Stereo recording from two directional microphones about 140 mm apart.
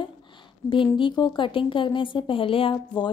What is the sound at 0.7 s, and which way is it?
A woman's voice, 35° left (ahead or behind).